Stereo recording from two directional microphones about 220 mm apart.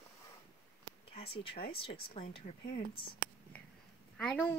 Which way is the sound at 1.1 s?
25° left (ahead or behind).